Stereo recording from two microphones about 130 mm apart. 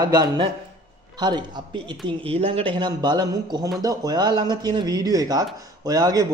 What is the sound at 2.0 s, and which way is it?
A man's voice, 45° right (ahead or behind).